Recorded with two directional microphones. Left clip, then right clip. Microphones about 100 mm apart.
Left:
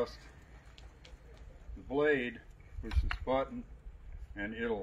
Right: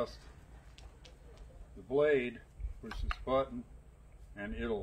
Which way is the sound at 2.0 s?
40° right (ahead or behind).